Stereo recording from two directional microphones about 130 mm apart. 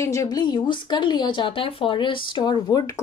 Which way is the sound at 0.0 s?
25° left (ahead or behind).